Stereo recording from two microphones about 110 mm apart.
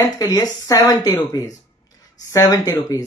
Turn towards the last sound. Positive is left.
turn(degrees=35)  # may be behind; listen again after turning